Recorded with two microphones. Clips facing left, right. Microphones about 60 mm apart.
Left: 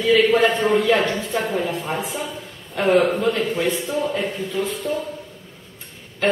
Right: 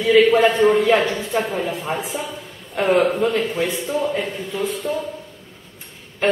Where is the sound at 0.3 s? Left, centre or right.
Right.